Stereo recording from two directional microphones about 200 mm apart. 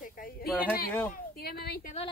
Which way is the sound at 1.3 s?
50° left (ahead or behind).